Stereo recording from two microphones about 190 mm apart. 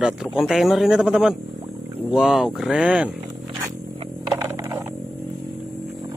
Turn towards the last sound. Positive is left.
turn(degrees=-15)  # may be behind; listen again after turning